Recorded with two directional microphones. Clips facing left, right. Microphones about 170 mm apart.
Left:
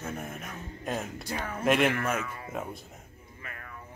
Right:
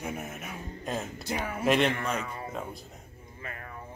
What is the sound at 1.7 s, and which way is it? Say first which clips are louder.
Speech: even; 5° left (ahead or behind).